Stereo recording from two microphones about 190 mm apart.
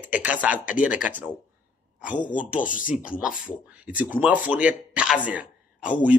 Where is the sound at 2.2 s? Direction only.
45° left (ahead or behind).